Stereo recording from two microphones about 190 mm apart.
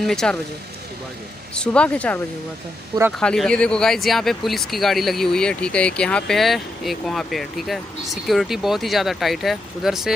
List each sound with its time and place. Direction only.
0.0 s speech: 5° left (ahead or behind)
1.5 s speech: 5° left (ahead or behind)